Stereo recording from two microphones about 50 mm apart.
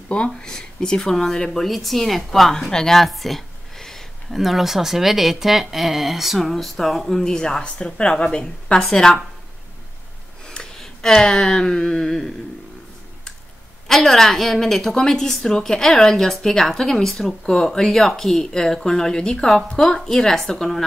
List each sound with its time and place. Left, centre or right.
0.1 s a woman's voice: centre
4.4 s a woman's voice: centre
10.4 s a sound: centre
13.8 s a woman's voice: centre